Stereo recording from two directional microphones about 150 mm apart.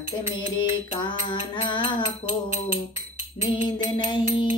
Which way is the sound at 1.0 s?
30° left (ahead or behind).